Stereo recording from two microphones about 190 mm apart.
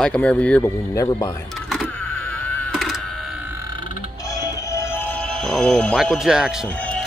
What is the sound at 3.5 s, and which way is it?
Burping, 20° right (ahead or behind).